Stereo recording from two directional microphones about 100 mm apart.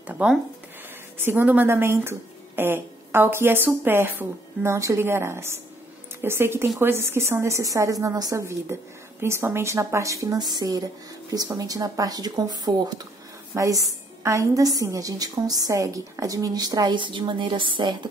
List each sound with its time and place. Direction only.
0.0 s a woman's voice: 10° right (ahead or behind); by 13.0 s 40° right (ahead or behind)
13.5 s a woman's voice: 30° right (ahead or behind); by 17.9 s 55° right (ahead or behind)